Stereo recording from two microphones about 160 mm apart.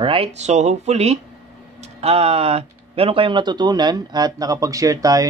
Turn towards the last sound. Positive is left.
turn(degrees=-20)  # may be behind; listen again after turning